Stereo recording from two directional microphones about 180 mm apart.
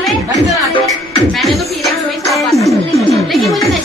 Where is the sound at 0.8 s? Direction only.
Centre (ahead or behind).